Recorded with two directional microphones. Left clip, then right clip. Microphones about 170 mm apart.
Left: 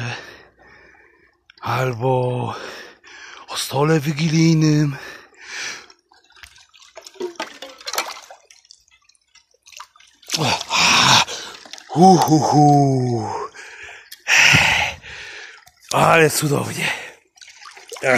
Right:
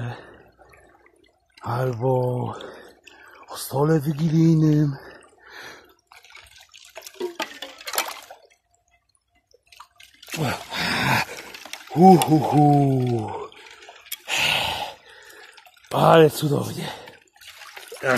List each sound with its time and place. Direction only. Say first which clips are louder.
0.0 s a sound: left 7 dB; 25° left (ahead or behind)
1.6 s speech: left 4 dB; 35° left (ahead or behind)
2.5 s a sound: left 5 dB; 25° left (ahead or behind)
7.0 s toilet flush: left 1 dB; 35° left (ahead or behind)
9.9 s drip: left 8 dB; 35° left (ahead or behind)
10.7 s dog: left 10 dB; 20° left (ahead or behind)
11.9 s speech: left 2 dB; 55° left (ahead or behind)
14.2 s a sound: left 9 dB; 60° left (ahead or behind)
16.0 s speech: left 1 dB; 55° left (ahead or behind)